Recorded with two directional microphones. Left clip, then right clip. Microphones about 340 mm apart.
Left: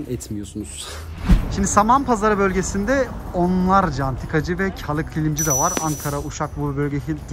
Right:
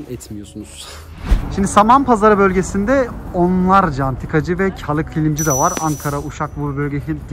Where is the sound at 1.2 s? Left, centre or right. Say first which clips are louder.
Right 2 dB; centre.